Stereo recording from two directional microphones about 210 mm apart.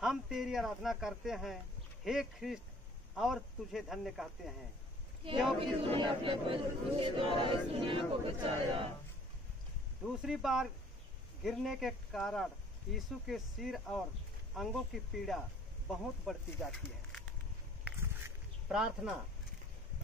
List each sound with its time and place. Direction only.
0.0 s a man's voice: centre (ahead or behind)
5.6 s a man's voice: 25° right (ahead or behind)
10.0 s a man's voice: centre (ahead or behind)
17.8 s a sound: 10° right (ahead or behind)
18.7 s a man's voice: 5° right (ahead or behind)